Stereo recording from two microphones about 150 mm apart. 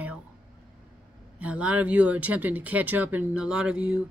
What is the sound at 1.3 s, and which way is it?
Speech, 10° right (ahead or behind).